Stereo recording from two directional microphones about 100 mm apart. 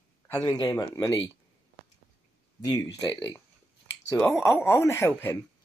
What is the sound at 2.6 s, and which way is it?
Speech, 40° left (ahead or behind).